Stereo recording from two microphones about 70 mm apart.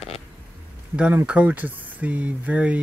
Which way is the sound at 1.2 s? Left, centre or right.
Centre.